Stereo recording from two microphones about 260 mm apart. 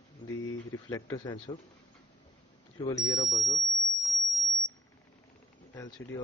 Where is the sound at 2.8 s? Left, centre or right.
Centre.